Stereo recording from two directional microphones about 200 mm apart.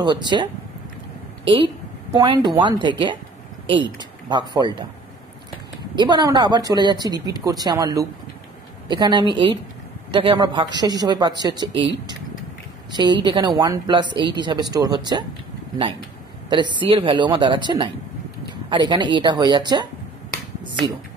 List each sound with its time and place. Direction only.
0.0 s a woman's voice: 20° right (ahead or behind)
5.9 s a woman's voice: 20° right (ahead or behind)
12.9 s a woman's voice: 20° right (ahead or behind)
16.4 s a woman's voice: 25° right (ahead or behind)